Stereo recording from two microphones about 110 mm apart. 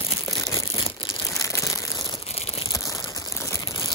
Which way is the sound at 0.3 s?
30° left (ahead or behind).